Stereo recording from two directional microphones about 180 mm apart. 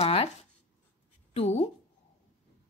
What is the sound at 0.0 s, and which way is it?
Writing, 35° left (ahead or behind).